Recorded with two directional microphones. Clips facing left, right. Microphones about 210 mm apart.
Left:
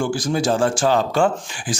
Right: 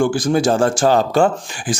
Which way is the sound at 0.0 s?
55° right (ahead or behind).